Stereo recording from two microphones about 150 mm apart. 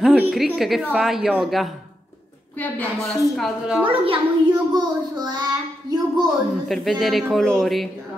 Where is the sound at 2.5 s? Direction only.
10° left (ahead or behind).